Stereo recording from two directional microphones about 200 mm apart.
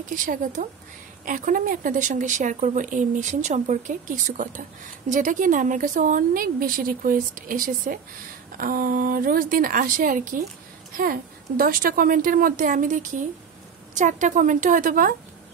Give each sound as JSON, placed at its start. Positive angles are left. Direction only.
{"t": 0.1, "sound": "a woman's voice", "side_deg": -40}